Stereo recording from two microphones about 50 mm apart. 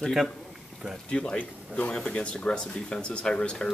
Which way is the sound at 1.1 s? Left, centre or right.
Centre.